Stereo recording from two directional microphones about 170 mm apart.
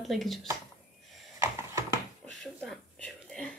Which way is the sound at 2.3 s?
5° left (ahead or behind).